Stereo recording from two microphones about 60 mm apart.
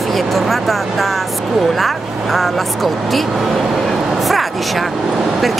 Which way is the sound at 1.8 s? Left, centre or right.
Centre.